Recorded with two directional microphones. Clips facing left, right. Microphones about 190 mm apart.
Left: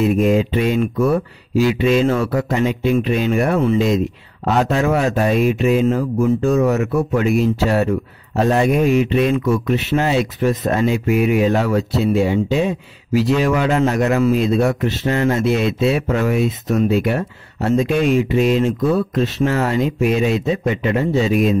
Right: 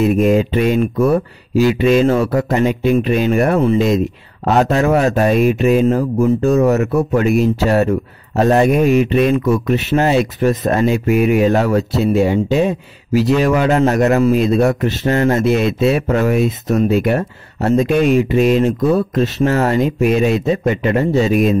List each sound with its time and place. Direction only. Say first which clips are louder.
0.0 s speech: right 2 dB; 55° right (ahead or behind)
9.5 s speech: right 2 dB; 45° right (ahead or behind)